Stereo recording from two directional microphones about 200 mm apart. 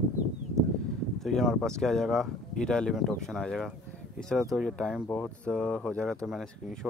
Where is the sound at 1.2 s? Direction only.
Centre (ahead or behind).